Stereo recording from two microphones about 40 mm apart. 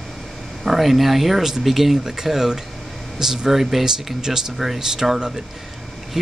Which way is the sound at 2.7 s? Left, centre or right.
Centre.